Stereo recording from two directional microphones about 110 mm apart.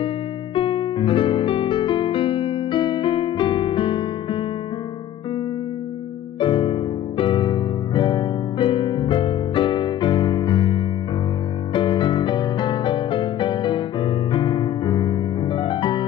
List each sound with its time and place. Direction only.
0.6 s music: 50° left (ahead or behind)
6.4 s music: 50° left (ahead or behind)